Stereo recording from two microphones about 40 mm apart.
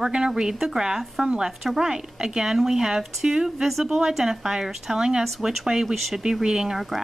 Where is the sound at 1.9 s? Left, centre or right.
Centre.